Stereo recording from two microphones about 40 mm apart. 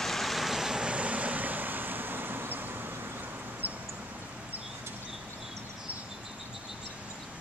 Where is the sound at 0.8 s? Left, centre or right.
Right.